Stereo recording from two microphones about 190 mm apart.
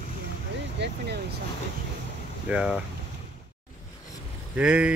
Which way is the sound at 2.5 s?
5° right (ahead or behind).